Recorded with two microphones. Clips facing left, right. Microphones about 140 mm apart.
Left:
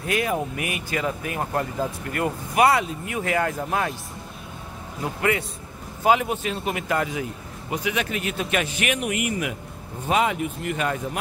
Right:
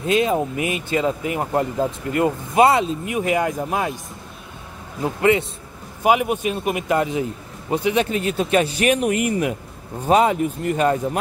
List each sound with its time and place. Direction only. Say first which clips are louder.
0.0 s speech: right 6 dB; 20° right (ahead or behind)
5.0 s a man's voice: right 6 dB; 25° right (ahead or behind)